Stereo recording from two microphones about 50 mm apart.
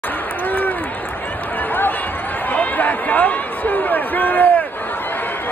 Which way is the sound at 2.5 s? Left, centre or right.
Left.